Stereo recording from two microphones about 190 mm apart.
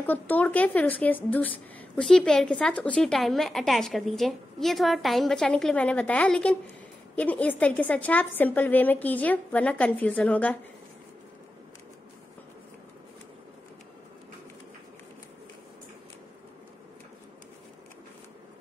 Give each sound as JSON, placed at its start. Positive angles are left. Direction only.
{"t": 0.0, "sound": "a woman's voice", "side_deg": 10}